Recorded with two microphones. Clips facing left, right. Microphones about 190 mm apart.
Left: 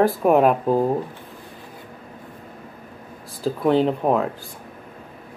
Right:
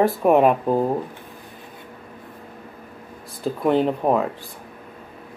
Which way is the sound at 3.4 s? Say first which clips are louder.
Left 1 dB; centre (ahead or behind).